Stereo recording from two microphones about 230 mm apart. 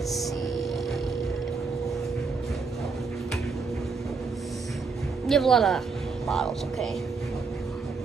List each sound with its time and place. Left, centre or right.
5.2 s speech: centre